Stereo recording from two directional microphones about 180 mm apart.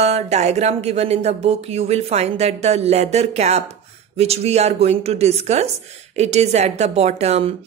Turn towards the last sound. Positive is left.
turn(degrees=-35)  # may be behind; listen again after turning